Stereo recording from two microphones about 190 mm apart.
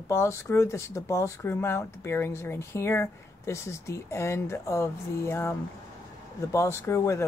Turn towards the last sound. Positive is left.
turn(degrees=15)  # may be behind; listen again after turning